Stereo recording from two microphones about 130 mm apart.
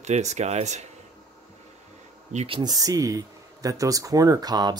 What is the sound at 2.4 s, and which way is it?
Speech, 35° right (ahead or behind).